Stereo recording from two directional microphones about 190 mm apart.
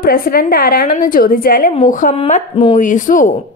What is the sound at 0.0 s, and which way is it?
A woman's voice, 50° left (ahead or behind).